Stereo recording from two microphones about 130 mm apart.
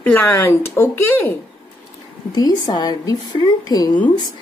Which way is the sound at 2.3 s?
30° left (ahead or behind).